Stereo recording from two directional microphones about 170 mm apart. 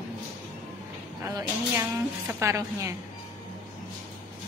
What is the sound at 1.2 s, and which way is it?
A woman's voice, 15° right (ahead or behind).